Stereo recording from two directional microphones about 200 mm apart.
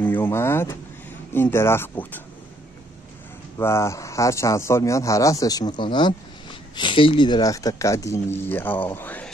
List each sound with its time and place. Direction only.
0.0 s speech: 10° left (ahead or behind)
3.5 s speech: 15° left (ahead or behind)